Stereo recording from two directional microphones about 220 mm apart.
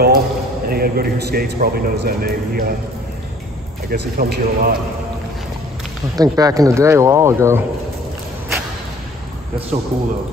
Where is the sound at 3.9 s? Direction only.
45° right (ahead or behind).